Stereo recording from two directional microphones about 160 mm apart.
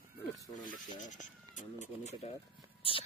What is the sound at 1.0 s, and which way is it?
Speech, 50° left (ahead or behind).